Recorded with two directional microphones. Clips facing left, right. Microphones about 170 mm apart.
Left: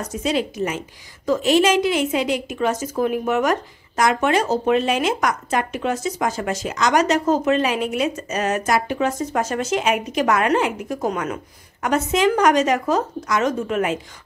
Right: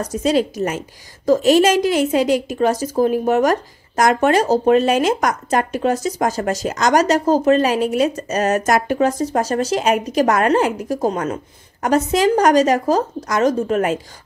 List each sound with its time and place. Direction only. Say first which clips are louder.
0.0 s a woman's voice: right 5 dB; 40° right (ahead or behind)